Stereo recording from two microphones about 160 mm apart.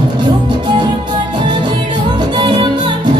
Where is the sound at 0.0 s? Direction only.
25° right (ahead or behind).